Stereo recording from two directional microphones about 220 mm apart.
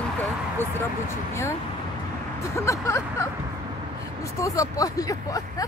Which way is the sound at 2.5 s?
15° left (ahead or behind).